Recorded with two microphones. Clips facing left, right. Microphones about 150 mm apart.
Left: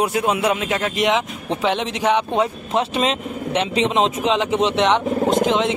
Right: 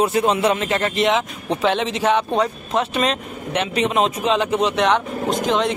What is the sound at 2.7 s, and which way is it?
Speech, 25° left (ahead or behind).